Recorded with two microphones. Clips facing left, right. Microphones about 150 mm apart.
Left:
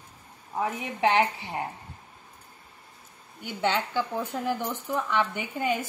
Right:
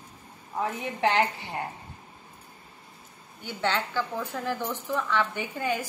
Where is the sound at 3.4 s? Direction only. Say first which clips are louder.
Left 1 dB; 15° left (ahead or behind).